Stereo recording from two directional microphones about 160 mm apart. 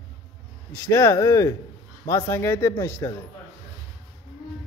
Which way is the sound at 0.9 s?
20° left (ahead or behind).